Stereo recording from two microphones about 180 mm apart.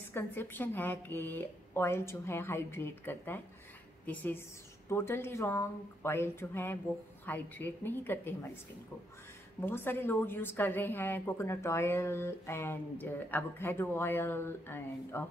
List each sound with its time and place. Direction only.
0.1 s a woman's voice: 10° left (ahead or behind)
9.6 s a woman's voice: 10° left (ahead or behind)